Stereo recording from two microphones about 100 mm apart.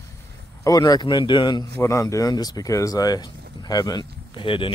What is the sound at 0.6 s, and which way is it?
Speech, 35° left (ahead or behind).